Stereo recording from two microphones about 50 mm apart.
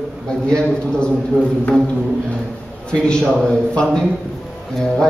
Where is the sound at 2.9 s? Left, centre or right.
Centre.